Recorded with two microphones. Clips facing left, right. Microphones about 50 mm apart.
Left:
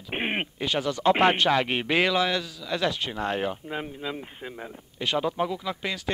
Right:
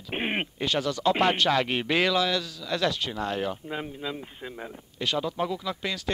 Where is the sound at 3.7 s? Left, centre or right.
Centre.